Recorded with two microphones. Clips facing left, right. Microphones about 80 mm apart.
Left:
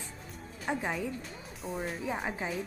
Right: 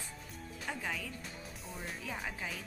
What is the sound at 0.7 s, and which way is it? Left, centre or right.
Speech, left.